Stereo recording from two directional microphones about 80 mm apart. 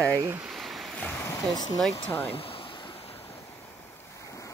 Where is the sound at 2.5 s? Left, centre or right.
Left.